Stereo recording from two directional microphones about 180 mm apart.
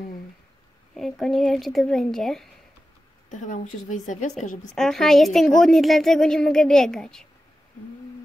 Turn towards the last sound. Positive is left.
turn(degrees=5)  # may be behind; listen again after turning